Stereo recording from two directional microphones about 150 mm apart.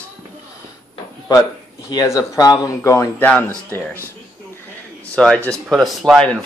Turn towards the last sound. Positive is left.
turn(degrees=0)  # may be behind; listen again after turning